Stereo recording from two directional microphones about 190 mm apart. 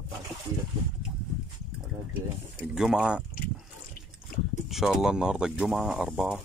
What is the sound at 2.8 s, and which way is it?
Speech, 5° right (ahead or behind).